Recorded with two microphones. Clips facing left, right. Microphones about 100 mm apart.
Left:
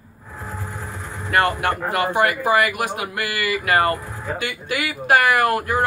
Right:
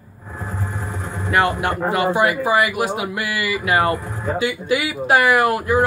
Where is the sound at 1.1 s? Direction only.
15° right (ahead or behind).